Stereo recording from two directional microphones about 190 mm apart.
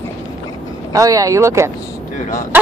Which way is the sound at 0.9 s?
20° right (ahead or behind).